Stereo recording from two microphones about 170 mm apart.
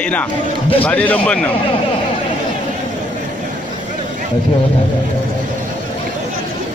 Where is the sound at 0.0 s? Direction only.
10° left (ahead or behind).